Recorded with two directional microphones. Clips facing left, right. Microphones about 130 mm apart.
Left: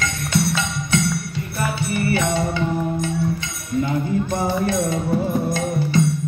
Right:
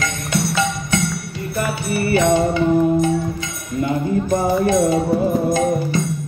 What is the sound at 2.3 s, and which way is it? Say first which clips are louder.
Music: right 6 dB; 50° right (ahead or behind).